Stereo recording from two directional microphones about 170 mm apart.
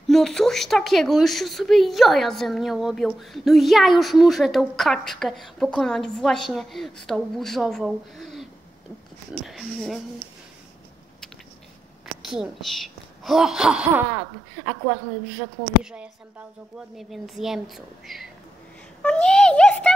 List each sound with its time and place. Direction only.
0.1 s a woman's voice: centre (ahead or behind)
12.3 s a woman's voice: centre (ahead or behind)
15.8 s a woman's voice: 5° right (ahead or behind)
19.0 s a sound: 5° left (ahead or behind)